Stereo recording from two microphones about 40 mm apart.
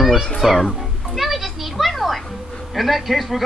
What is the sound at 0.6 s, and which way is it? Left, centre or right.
Music, centre.